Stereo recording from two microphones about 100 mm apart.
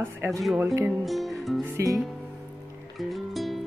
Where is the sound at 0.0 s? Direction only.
25° right (ahead or behind).